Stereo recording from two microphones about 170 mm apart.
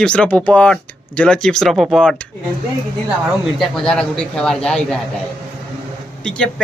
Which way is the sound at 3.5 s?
Centre (ahead or behind).